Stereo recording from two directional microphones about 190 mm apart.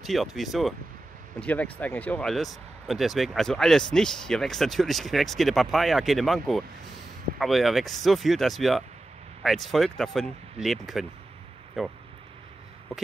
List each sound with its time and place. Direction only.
0.0 s speech: centre (ahead or behind)